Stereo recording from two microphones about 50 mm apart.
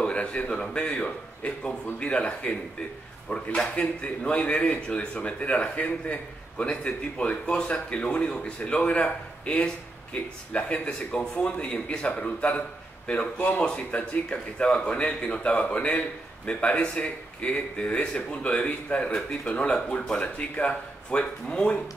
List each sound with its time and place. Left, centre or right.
0.0 s a man's voice: left